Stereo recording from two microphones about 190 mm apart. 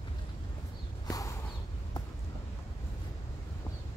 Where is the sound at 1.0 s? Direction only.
20° left (ahead or behind).